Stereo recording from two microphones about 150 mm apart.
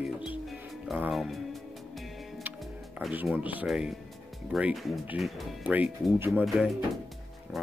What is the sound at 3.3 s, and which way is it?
Speech, 10° right (ahead or behind).